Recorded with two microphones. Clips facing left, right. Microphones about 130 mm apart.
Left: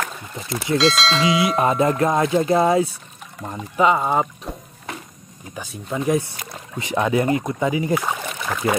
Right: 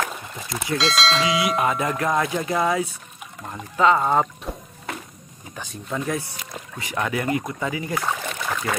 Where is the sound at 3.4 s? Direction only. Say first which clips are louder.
Left 1 dB; 10° left (ahead or behind).